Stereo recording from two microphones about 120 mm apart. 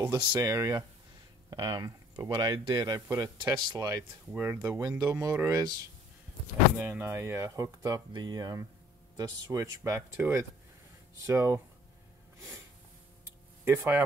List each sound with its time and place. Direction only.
0.3 s speech: 25° right (ahead or behind)
4.3 s speech: 20° right (ahead or behind)
6.8 s speech: 20° right (ahead or behind)
13.7 s speech: 20° right (ahead or behind)